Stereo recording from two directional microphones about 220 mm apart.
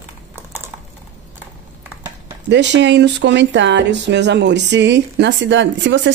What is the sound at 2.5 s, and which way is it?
Speech, 50° right (ahead or behind).